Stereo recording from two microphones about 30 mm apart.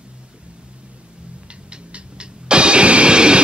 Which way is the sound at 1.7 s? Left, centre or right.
Right.